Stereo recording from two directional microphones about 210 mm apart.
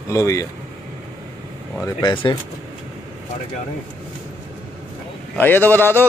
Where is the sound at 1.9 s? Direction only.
20° left (ahead or behind).